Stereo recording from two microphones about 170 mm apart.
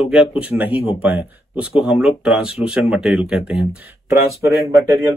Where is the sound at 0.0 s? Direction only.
5° right (ahead or behind).